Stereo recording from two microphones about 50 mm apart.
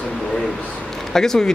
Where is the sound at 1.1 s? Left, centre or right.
Centre.